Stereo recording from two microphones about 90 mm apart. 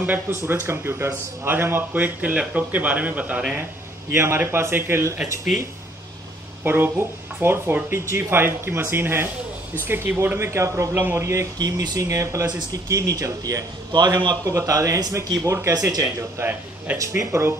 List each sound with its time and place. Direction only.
0.7 s speech: 30° right (ahead or behind)
4.1 s speech: 25° right (ahead or behind)
5.5 s speech: centre (ahead or behind)
6.6 s speech: 25° right (ahead or behind)
11.5 s a man's voice: 50° right (ahead or behind)
12.1 s a man's voice: 35° right (ahead or behind); by 14.5 s 55° right (ahead or behind)
14.5 s speech: 35° right (ahead or behind)
16.4 s speech: 20° right (ahead or behind)
17.0 s speech: 30° right (ahead or behind)